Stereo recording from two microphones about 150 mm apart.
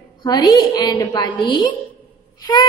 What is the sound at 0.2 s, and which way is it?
A woman's voice, 25° left (ahead or behind).